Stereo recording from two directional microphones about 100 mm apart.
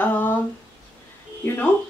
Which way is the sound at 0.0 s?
15° left (ahead or behind).